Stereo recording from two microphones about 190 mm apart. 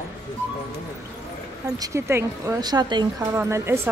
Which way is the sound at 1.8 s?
15° right (ahead or behind).